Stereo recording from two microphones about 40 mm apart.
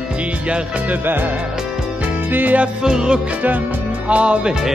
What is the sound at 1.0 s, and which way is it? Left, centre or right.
Music, right.